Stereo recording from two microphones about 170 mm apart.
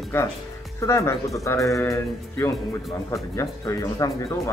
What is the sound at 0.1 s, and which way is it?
Speech, 15° left (ahead or behind).